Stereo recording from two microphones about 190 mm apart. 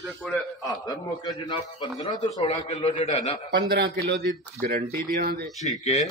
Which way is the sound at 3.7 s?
60° right (ahead or behind).